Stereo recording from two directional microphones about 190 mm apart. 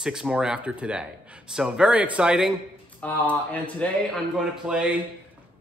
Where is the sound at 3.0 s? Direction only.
10° left (ahead or behind).